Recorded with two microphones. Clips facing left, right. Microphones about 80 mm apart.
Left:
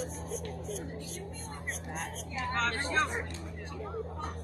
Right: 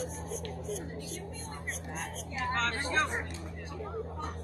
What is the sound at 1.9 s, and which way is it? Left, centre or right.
Speech, centre.